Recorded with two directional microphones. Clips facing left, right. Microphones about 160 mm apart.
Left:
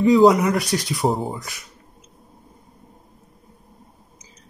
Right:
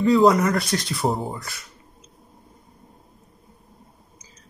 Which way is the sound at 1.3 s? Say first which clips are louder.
Left 2 dB; 15° left (ahead or behind).